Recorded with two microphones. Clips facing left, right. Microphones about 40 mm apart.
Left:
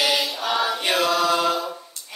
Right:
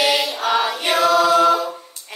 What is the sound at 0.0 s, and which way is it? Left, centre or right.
Choir, right.